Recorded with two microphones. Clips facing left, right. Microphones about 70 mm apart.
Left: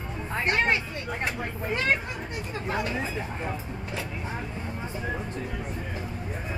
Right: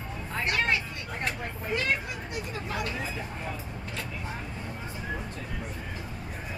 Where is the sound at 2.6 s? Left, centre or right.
Left.